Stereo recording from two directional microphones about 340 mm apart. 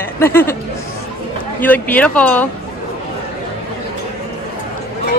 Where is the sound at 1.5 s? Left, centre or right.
Centre.